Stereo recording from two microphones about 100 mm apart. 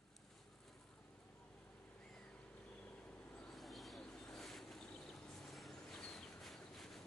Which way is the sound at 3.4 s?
Centre (ahead or behind).